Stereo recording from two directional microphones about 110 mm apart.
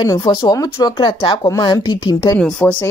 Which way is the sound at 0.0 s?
30° left (ahead or behind).